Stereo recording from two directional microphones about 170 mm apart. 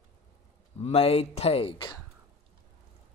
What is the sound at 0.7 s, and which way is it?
Speech, 35° left (ahead or behind).